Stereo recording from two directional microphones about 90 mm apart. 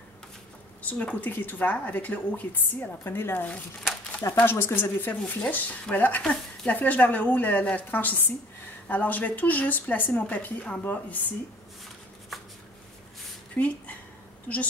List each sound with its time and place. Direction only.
0.8 s speech: 15° left (ahead or behind)
13.6 s speech: 15° left (ahead or behind)